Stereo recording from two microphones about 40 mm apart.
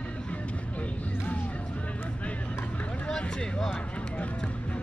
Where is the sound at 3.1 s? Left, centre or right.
Centre.